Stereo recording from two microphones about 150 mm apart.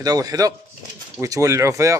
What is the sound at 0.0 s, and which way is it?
A man's voice, 25° right (ahead or behind).